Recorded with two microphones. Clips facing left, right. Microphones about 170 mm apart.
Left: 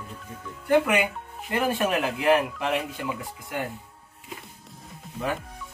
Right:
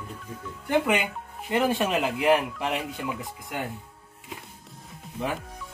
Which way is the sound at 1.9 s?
15° right (ahead or behind).